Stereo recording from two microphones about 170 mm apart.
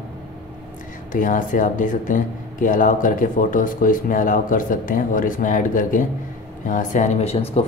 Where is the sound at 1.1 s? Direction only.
50° left (ahead or behind).